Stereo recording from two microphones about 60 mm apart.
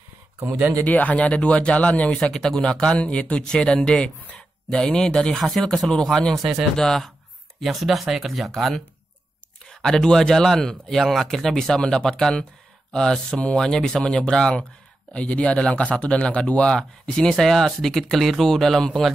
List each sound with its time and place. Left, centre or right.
0.4 s speech: right
0.8 s speech: left
2.3 s a man's voice: centre
6.3 s a man's voice: centre